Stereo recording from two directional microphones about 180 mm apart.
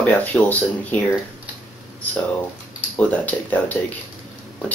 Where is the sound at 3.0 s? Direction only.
10° left (ahead or behind).